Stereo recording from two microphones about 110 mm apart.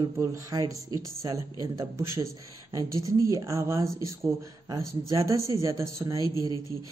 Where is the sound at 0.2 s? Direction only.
30° right (ahead or behind).